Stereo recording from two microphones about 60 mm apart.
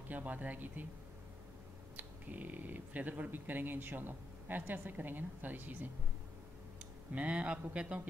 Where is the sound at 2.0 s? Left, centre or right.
Right.